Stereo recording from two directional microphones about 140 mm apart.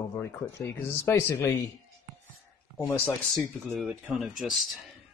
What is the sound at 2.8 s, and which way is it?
Speech, 10° left (ahead or behind).